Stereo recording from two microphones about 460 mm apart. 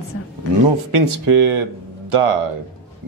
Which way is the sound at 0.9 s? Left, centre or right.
Right.